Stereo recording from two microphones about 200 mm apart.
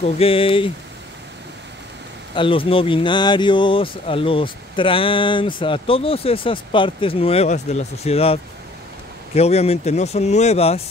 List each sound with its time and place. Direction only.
0.0 s speech: 30° left (ahead or behind)
2.3 s speech: 25° left (ahead or behind)